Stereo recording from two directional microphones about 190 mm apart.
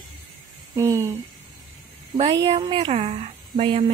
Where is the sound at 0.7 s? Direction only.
15° right (ahead or behind).